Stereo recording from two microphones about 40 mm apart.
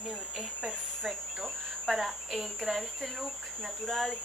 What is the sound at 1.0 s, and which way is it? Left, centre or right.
Speech, centre.